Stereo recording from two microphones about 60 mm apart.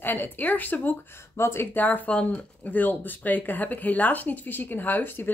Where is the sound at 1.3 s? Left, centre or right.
Left.